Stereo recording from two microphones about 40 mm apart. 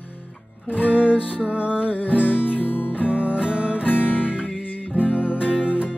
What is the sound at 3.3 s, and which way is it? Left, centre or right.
Music, right.